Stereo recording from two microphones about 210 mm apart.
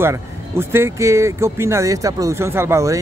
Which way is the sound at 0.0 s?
10° right (ahead or behind).